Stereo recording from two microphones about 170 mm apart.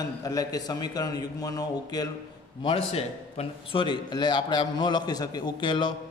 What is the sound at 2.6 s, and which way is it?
A man's voice, 35° left (ahead or behind).